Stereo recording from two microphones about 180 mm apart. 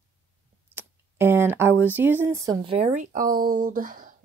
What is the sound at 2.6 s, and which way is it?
Speech, 35° right (ahead or behind).